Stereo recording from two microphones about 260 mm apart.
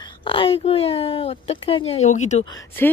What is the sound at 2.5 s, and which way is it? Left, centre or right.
Speech, centre.